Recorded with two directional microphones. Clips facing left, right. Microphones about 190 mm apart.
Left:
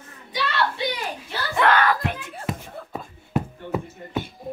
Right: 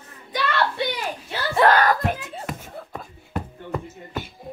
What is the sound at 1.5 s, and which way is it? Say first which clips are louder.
Speech: right 2 dB; 40° right (ahead or behind).